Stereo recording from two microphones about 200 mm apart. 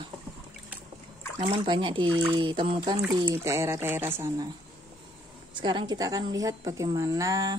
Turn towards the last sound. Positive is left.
turn(degrees=-15)  # may be behind; listen again after turning